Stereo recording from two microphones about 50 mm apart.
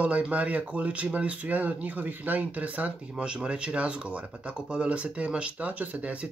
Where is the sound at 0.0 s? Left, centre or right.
Right.